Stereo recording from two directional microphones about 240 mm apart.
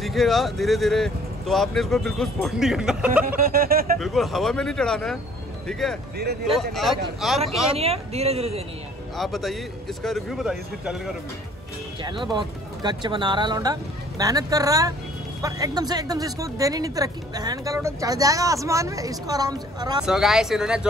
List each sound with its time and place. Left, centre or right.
0.0 s speech: centre
3.3 s a sound: right
4.0 s speech: centre
7.7 s speech: right
9.1 s speech: centre
12.0 s speech: centre
20.0 s speech: centre